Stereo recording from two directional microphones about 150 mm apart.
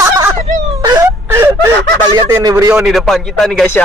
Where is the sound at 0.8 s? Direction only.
25° right (ahead or behind).